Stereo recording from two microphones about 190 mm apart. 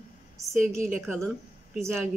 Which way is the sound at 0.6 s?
Centre (ahead or behind).